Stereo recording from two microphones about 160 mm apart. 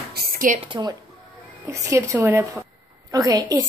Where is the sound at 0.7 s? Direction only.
25° right (ahead or behind).